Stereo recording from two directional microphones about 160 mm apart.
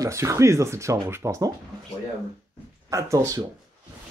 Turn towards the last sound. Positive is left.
turn(degrees=-20)  # may be behind; listen again after turning